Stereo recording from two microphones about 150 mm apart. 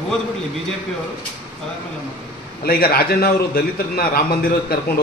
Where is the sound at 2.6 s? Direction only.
90° left.